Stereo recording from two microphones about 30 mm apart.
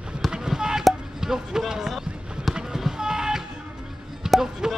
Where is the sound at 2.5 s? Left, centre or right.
Right.